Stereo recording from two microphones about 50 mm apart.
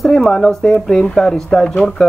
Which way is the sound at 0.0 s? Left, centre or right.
Centre.